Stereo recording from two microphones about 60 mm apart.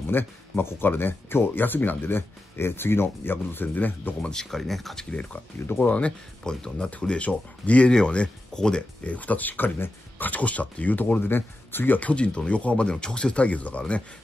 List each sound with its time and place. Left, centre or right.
0.0 s speech: left
4.2 s speech: centre
5.7 s speech: left